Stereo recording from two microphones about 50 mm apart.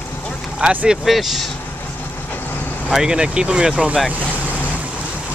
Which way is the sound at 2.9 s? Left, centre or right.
Centre.